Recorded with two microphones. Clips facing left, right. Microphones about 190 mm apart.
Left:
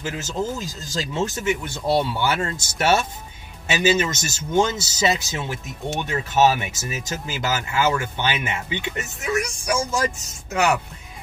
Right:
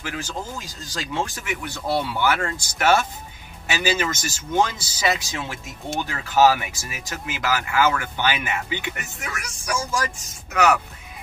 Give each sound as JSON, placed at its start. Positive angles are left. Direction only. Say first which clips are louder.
{"t": 0.0, "sound": "speech", "louder": "left 4 dB", "side_deg": 25}